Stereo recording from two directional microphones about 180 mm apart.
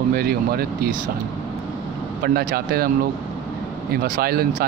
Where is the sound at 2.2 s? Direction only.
60° right (ahead or behind).